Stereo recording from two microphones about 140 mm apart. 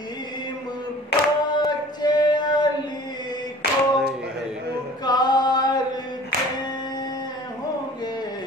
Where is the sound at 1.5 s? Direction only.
30° left (ahead or behind).